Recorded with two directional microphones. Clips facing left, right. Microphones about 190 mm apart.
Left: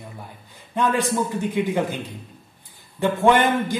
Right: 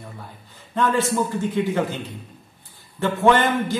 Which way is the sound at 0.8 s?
15° left (ahead or behind).